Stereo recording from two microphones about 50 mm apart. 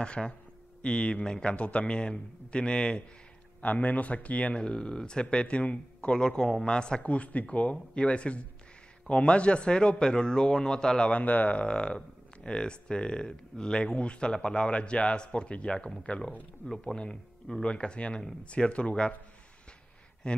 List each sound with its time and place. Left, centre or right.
0.0 s speech: centre
3.6 s a man's voice: left; by 11.1 s centre
11.1 s speech: left
20.2 s speech: centre